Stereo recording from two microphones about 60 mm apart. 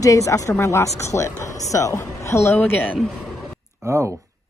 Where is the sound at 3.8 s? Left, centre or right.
Right.